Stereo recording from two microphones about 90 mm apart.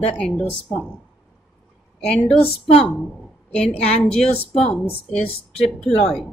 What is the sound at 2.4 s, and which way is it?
Speech, 90° left.